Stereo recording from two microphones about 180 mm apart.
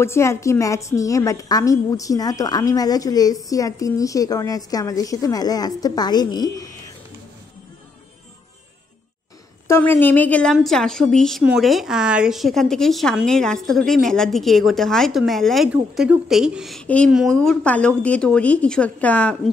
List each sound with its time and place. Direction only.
0.0 s a woman's voice: 15° left (ahead or behind)
9.7 s a woman's voice: 10° left (ahead or behind)